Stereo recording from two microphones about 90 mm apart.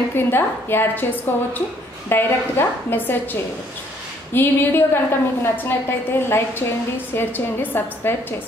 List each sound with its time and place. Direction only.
0.1 s a woman's voice: 25° left (ahead or behind)
4.3 s a woman's voice: 25° left (ahead or behind)